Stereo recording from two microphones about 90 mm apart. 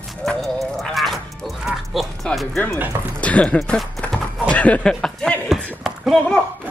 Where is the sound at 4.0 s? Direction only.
15° left (ahead or behind).